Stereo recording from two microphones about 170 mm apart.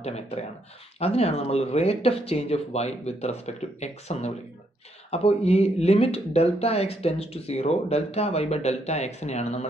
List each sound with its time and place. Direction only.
0.0 s speech: 40° left (ahead or behind)